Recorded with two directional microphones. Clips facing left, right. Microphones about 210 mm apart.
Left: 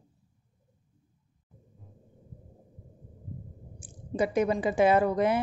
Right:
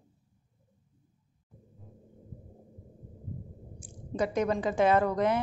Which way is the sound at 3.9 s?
5° left (ahead or behind).